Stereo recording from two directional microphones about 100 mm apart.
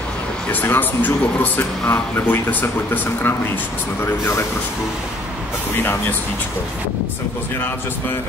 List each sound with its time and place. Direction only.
0.5 s speech: 20° left (ahead or behind)